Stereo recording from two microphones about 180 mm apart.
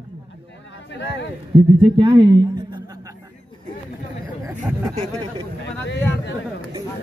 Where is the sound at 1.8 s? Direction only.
25° right (ahead or behind).